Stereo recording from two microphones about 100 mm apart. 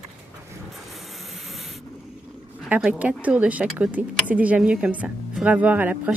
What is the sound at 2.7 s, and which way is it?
Speech, 10° right (ahead or behind).